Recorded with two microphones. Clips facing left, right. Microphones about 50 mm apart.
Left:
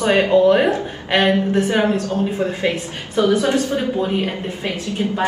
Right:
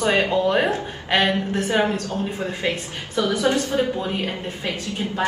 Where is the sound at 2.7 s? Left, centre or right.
Left.